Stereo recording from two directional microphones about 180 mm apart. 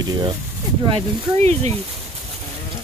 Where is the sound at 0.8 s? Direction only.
35° right (ahead or behind).